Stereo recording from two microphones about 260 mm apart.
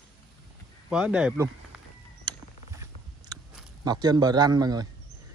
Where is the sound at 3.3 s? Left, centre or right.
Centre.